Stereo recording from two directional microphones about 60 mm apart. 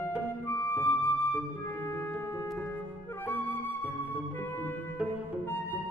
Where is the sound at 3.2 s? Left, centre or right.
Left.